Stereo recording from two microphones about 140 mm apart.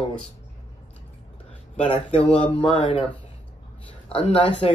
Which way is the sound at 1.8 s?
45° left (ahead or behind).